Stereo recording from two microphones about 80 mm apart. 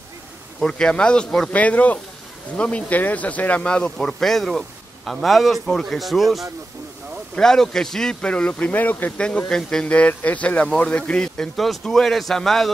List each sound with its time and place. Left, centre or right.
0.6 s a man's voice: centre
1.5 s a man's voice: centre
9.5 s a man's voice: centre